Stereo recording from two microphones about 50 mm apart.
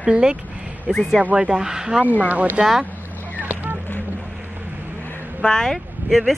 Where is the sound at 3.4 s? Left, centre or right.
Right.